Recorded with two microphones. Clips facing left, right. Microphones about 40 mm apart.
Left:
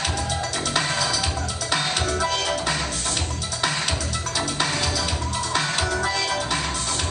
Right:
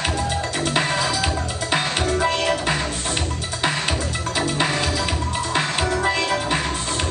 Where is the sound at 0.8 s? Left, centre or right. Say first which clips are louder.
Right 2 dB; right.